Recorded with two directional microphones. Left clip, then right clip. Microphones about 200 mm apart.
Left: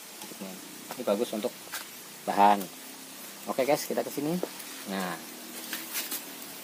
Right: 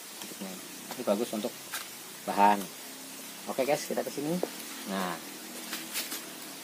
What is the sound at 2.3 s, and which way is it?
Speech, 40° left (ahead or behind).